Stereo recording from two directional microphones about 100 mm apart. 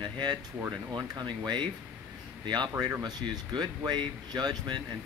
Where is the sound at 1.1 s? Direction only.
35° right (ahead or behind).